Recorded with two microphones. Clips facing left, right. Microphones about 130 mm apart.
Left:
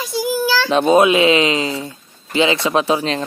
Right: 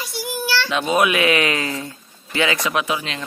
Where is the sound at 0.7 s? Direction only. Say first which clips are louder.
Left 7 dB; 30° left (ahead or behind).